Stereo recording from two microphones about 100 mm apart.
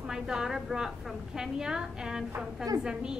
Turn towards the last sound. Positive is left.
turn(degrees=-10)  # may be behind; listen again after turning